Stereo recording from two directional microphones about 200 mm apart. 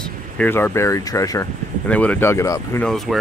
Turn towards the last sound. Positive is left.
turn(degrees=0)  # may be behind; listen again after turning